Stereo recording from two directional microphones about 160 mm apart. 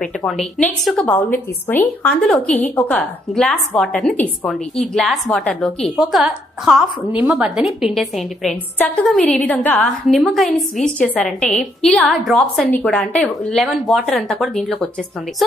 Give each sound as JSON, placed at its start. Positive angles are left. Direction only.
{"t": 0.0, "sound": "a woman's voice", "side_deg": 0}